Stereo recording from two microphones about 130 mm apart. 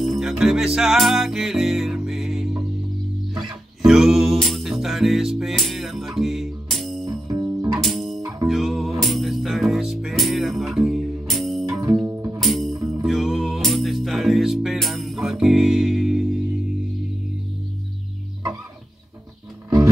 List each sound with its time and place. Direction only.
0.0 s music: centre (ahead or behind)
3.8 s music: 5° right (ahead or behind)
7.1 s music: 30° right (ahead or behind)
7.8 s music: centre (ahead or behind)
12.1 s music: 20° right (ahead or behind)
12.4 s music: centre (ahead or behind)